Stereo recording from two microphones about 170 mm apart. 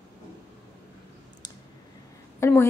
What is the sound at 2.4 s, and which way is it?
Speech, 15° left (ahead or behind).